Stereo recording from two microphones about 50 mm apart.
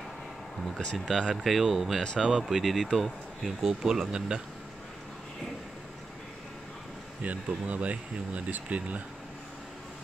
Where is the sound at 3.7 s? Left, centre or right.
Centre.